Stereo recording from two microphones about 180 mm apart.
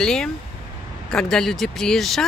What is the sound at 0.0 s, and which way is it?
Speech, 5° left (ahead or behind).